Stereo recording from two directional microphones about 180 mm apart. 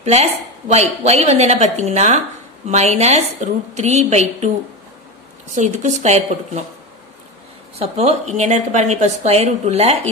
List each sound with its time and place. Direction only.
0.0 s a woman's voice: 35° right (ahead or behind)
5.5 s a woman's voice: 40° right (ahead or behind)
7.8 s a woman's voice: 35° right (ahead or behind)